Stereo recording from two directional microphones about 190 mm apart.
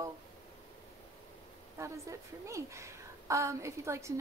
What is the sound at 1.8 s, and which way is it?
Speech, 15° right (ahead or behind).